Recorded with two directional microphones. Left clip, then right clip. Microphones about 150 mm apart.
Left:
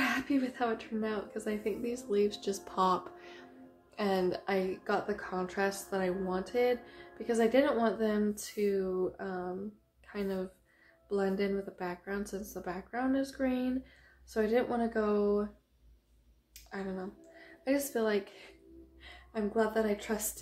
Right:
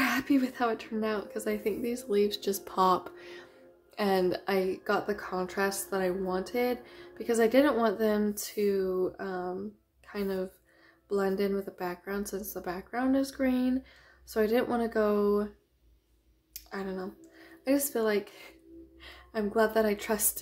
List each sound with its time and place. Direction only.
0.0 s a woman's voice: 25° right (ahead or behind)
16.7 s a woman's voice: 25° right (ahead or behind); by 20.2 s 40° right (ahead or behind)